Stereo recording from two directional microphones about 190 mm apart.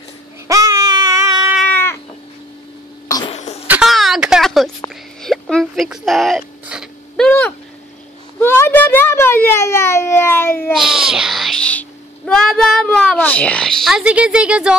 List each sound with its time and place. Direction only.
0.5 s baby cry: 20° right (ahead or behind)
1.5 s cat: 5° left (ahead or behind)
3.1 s cough: 20° left (ahead or behind)
3.3 s cough: 35° left (ahead or behind)
3.6 s a sound: 5° right (ahead or behind); by 10.7 s 10° left (ahead or behind)
10.7 s speech: centre (ahead or behind)